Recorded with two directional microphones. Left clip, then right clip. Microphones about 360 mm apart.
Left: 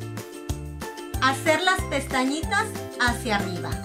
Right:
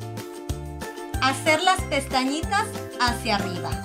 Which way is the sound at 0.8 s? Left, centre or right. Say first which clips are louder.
Even; centre.